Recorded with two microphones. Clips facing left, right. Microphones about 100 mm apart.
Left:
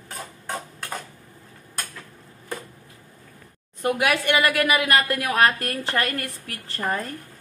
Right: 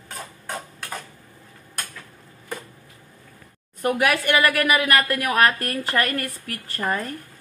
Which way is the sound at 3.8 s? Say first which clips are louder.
Right 1 dB; 20° left (ahead or behind).